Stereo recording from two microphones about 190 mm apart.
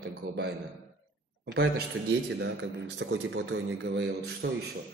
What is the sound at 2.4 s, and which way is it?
A man's voice, 65° right (ahead or behind).